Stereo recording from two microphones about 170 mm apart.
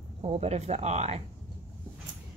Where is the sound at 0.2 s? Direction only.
35° right (ahead or behind).